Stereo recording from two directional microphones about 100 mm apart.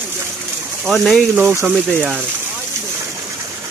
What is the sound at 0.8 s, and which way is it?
Speech, centre (ahead or behind).